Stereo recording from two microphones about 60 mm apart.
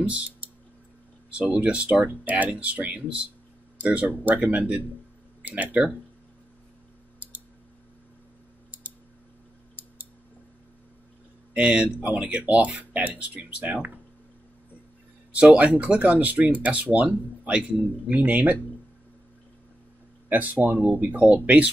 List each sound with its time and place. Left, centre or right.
0.0 s speech: right
1.3 s speech: centre
11.5 s speech: centre
15.5 s speech: right
20.2 s speech: right